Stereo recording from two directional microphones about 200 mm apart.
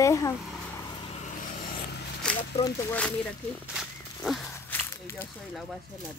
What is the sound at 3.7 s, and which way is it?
Wild animals, centre (ahead or behind).